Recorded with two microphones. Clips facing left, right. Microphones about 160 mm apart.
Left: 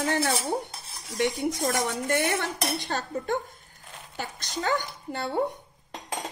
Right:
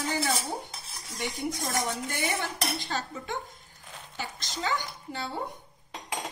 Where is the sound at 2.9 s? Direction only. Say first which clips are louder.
Left 5 dB; 50° left (ahead or behind).